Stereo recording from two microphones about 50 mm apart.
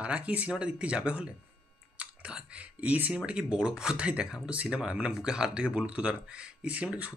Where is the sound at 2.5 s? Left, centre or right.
Right.